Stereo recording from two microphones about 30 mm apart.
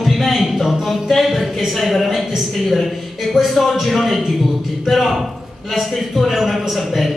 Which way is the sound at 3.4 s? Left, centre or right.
Right.